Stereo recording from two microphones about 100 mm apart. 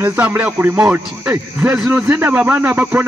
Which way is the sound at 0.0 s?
20° right (ahead or behind).